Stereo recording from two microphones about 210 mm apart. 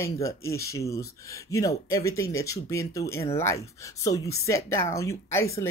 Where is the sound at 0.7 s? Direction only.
15° left (ahead or behind).